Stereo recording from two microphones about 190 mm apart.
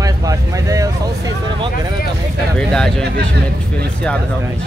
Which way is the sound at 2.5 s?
5° left (ahead or behind).